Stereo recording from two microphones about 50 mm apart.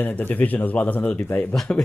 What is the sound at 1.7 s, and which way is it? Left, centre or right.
Speech, centre.